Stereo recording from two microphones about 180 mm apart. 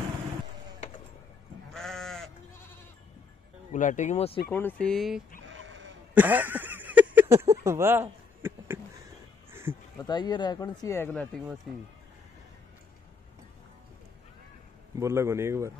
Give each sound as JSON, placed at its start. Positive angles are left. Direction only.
{"t": 1.7, "sound": "sheep", "side_deg": 0}
{"t": 3.7, "sound": "speech", "side_deg": 45}
{"t": 4.5, "sound": "speech", "side_deg": 10}
{"t": 5.5, "sound": "bleat", "side_deg": -90}
{"t": 6.1, "sound": "a sound", "side_deg": -10}
{"t": 10.0, "sound": "speech", "side_deg": 25}
{"t": 15.0, "sound": "a man's voice", "side_deg": -15}